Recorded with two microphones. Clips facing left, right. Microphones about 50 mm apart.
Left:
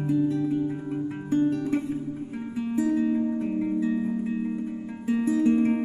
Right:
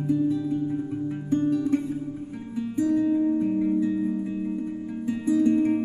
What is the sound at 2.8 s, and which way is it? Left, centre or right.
Music, centre.